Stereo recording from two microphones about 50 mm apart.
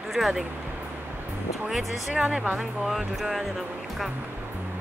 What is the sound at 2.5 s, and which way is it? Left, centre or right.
Speech, centre.